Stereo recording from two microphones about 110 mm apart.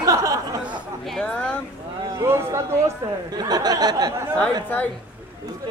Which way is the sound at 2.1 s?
25° right (ahead or behind).